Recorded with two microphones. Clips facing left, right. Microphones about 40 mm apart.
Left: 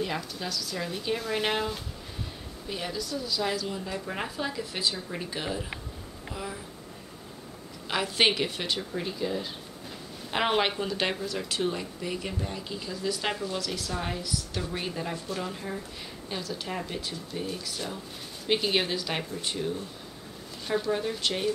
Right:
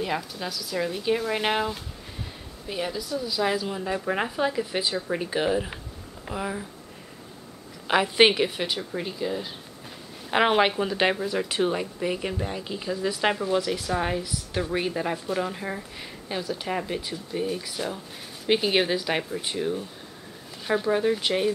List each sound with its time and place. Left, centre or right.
0.0 s speech: centre; by 6.6 s right
7.9 s speech: centre